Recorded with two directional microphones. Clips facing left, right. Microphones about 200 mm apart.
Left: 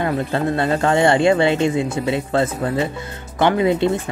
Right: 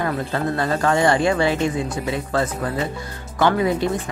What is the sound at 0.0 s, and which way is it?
A woman's voice, 25° left (ahead or behind).